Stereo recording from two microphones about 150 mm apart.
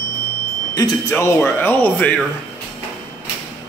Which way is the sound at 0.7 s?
20° left (ahead or behind).